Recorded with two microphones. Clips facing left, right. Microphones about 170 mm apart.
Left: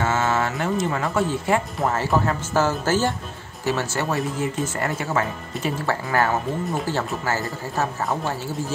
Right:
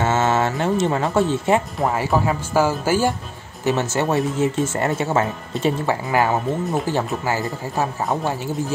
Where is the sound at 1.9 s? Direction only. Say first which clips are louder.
Right 1 dB; 10° right (ahead or behind).